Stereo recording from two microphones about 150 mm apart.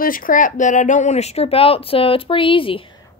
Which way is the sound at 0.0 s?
65° left (ahead or behind).